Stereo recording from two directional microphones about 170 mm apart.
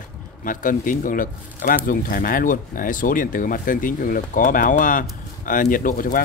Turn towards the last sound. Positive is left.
turn(degrees=55)  # may be behind; listen again after turning